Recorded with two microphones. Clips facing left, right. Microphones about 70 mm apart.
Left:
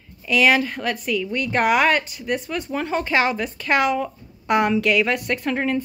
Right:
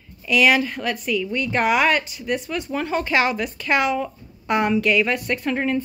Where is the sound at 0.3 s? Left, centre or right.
Left.